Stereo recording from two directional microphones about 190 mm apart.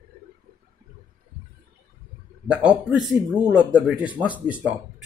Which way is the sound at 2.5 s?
5° right (ahead or behind).